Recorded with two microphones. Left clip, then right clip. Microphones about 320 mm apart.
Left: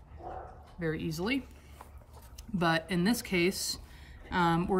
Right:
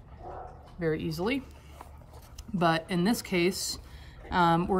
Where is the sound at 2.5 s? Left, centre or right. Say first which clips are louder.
Right 3 dB; centre.